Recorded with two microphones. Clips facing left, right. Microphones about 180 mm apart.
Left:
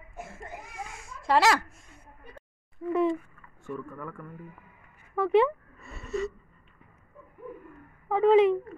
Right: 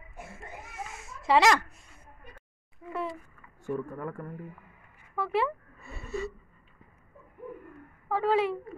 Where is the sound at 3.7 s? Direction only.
35° right (ahead or behind).